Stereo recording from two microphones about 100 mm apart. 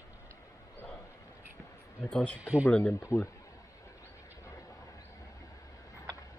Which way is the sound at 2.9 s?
30° left (ahead or behind).